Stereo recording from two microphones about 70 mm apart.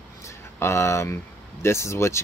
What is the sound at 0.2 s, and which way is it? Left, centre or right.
Speech, left.